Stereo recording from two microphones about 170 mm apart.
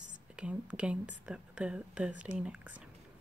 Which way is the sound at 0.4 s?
5° right (ahead or behind).